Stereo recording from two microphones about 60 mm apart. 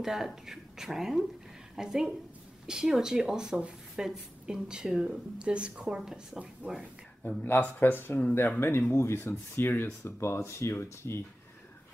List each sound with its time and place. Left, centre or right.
0.0 s speech: centre
7.2 s speech: left
10.0 s speech: left